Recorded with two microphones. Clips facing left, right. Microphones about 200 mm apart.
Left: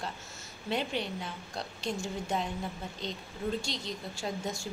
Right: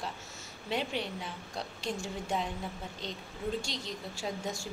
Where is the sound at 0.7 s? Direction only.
10° right (ahead or behind).